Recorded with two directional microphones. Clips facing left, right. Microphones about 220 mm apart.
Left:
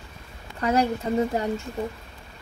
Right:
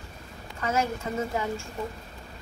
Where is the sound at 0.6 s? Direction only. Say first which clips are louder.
Left 5 dB; 35° left (ahead or behind).